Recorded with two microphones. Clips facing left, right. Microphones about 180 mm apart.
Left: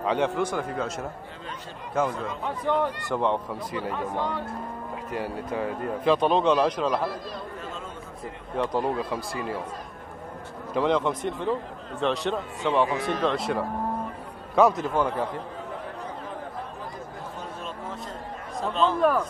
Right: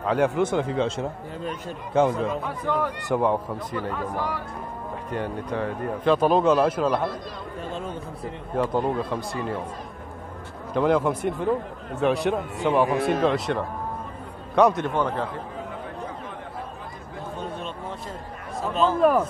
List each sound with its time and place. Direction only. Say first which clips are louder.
0.0 s a man's voice: right 3 dB; centre (ahead or behind)
0.4 s speech: right 5 dB; 25° right (ahead or behind)
2.6 s speech: left 2 dB; 20° left (ahead or behind)
3.1 s a man's voice: right 3 dB; 10° right (ahead or behind)
3.7 s speech: even; 15° left (ahead or behind)
5.1 s a man's voice: right 2 dB; 5° left (ahead or behind)
8.5 s a man's voice: right 2 dB; centre (ahead or behind)
10.7 s a man's voice: right 3 dB; centre (ahead or behind)
14.5 s a man's voice: right 1 dB; centre (ahead or behind)
18.6 s speech: right 2 dB; 5° right (ahead or behind)